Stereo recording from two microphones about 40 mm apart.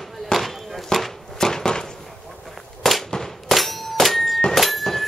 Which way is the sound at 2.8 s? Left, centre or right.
Centre.